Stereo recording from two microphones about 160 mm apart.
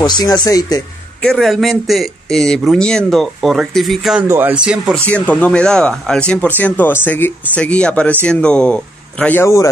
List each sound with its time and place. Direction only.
0.0 s speech: 25° left (ahead or behind)
1.2 s speech: centre (ahead or behind)
5.1 s speech: 10° left (ahead or behind)